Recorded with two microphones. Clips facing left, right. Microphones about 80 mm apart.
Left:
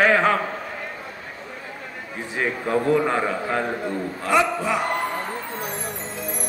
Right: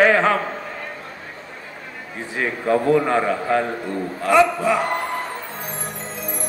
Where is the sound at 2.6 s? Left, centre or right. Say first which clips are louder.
Right 3 dB; centre.